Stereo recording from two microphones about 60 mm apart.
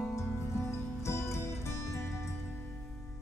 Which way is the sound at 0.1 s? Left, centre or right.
Left.